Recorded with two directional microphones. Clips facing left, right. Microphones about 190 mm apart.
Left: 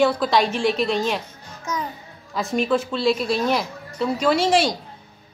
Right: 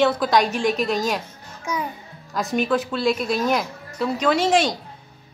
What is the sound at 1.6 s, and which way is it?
Music, 10° right (ahead or behind).